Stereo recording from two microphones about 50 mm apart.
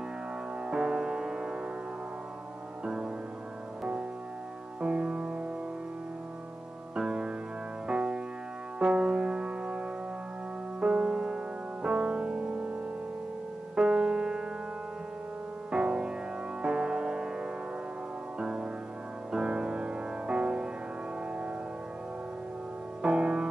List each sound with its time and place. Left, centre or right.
0.7 s music: centre
2.8 s music: centre
4.7 s music: right
7.0 s music: centre
13.7 s music: centre
15.7 s music: centre
23.0 s music: right